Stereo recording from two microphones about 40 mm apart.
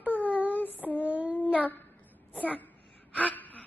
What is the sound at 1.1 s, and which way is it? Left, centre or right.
Child singing, right.